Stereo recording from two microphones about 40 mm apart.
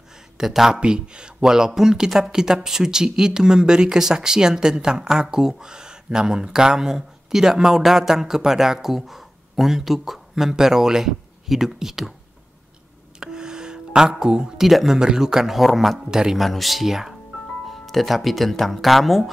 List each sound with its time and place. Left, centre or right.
0.4 s speech: centre
0.7 s speech: right; by 12.1 s centre
13.2 s music: centre
14.7 s speech: centre
15.0 s speech: centre
16.1 s speech: centre
16.3 s speech: centre
17.6 s speech: centre